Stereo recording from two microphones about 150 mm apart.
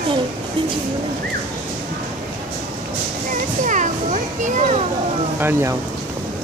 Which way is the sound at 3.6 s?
55° right (ahead or behind).